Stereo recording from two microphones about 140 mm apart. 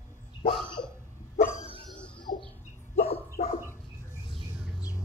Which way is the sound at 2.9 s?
45° left (ahead or behind).